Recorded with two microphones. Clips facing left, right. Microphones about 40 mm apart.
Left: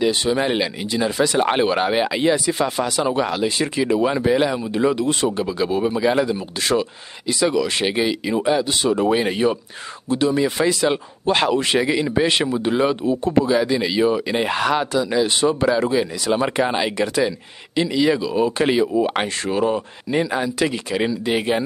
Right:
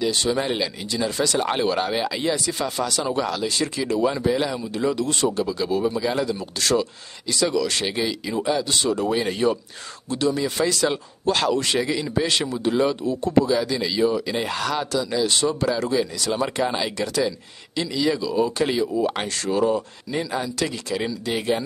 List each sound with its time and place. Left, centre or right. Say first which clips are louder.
0.0 s a man's voice: left 4 dB; left